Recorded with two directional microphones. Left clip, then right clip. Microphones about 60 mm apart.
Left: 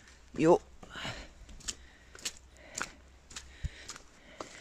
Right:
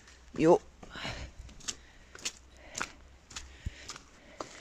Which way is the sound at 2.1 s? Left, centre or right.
Right.